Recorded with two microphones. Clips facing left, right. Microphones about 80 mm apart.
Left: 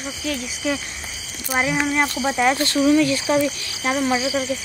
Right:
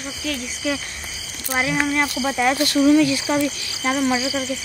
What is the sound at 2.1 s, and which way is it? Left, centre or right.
Speech, left.